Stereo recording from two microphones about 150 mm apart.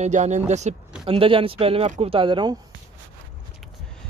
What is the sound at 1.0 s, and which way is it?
Speech, 35° right (ahead or behind).